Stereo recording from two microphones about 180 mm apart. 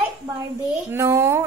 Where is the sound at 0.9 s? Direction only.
15° right (ahead or behind).